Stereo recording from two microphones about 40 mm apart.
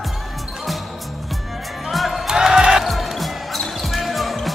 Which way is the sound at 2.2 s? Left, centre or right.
Centre.